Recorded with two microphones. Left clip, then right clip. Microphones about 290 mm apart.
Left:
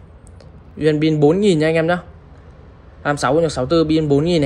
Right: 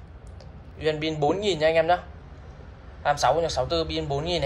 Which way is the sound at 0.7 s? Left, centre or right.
Left.